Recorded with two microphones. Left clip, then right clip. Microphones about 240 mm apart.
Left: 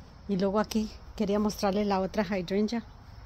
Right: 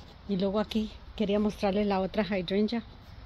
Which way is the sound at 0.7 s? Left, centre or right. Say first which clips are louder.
Left 1 dB; left.